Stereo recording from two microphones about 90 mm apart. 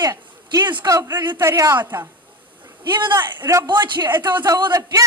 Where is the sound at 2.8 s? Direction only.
55° right (ahead or behind).